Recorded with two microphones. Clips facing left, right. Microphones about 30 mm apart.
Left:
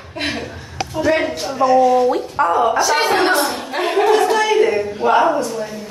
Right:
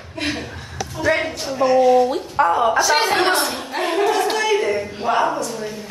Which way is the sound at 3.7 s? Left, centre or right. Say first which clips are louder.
Left 4 dB; centre.